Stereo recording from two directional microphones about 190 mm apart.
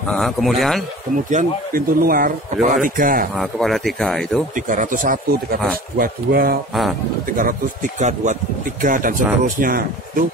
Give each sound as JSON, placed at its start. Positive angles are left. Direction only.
{"t": 0.1, "sound": "speech", "side_deg": 0}
{"t": 1.3, "sound": "speech", "side_deg": -50}
{"t": 3.3, "sound": "speech", "side_deg": 0}
{"t": 4.6, "sound": "speech", "side_deg": -45}
{"t": 6.7, "sound": "speech", "side_deg": 0}
{"t": 8.0, "sound": "speech", "side_deg": -40}